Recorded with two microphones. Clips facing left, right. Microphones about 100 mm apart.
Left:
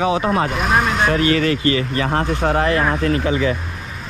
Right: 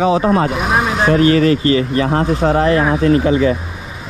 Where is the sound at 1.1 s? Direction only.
35° right (ahead or behind).